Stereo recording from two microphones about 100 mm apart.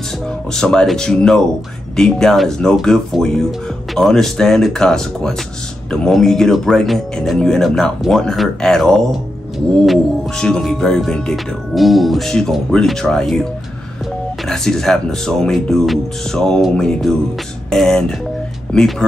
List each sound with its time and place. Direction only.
0.5 s speech: 5° left (ahead or behind)
10.4 s speech: 5° left (ahead or behind)
14.5 s speech: 5° left (ahead or behind)